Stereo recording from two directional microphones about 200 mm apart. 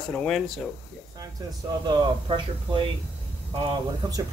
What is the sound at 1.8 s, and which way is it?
Speech, 25° right (ahead or behind).